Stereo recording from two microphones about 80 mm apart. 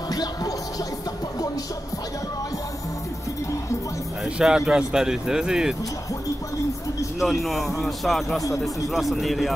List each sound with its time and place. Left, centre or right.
0.1 s music: left
4.4 s speech: centre
7.2 s speech: centre